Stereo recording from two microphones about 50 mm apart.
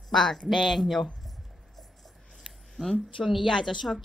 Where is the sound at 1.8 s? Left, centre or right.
Centre.